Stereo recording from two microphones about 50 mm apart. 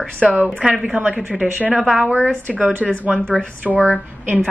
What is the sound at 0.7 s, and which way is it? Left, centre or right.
Speech, centre.